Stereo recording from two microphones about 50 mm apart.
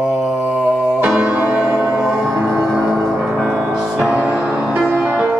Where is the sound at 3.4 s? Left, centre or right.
Centre.